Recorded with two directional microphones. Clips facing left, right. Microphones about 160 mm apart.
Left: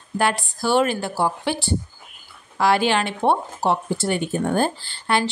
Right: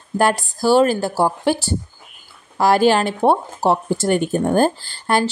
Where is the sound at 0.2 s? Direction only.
40° right (ahead or behind).